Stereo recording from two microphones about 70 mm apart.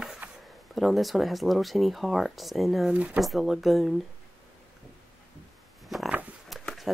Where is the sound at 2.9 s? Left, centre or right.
Right.